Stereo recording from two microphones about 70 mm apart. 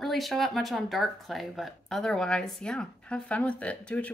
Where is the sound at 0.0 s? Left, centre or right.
Centre.